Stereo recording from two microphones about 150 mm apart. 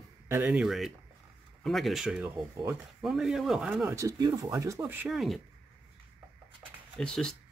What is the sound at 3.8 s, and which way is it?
Speech, 20° right (ahead or behind).